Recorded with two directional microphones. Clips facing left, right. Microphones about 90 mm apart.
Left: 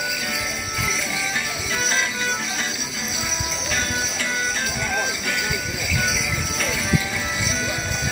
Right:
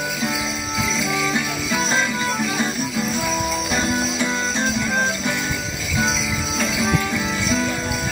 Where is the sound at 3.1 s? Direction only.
50° right (ahead or behind).